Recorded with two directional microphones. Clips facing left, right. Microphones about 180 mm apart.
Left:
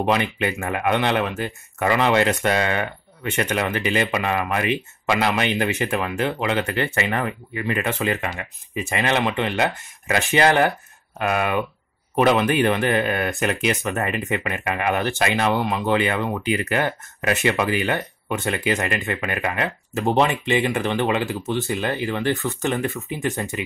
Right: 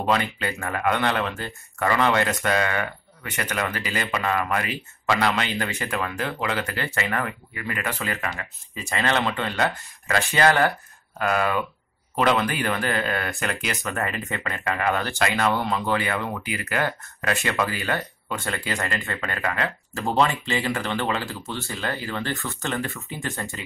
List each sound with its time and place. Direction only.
0.0 s speech: 20° left (ahead or behind)